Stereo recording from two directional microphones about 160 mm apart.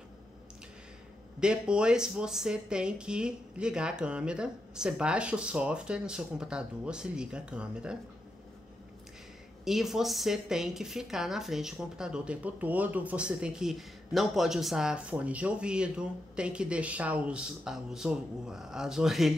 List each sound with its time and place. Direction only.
1.4 s a woman's voice: 5° right (ahead or behind)
9.7 s a woman's voice: centre (ahead or behind)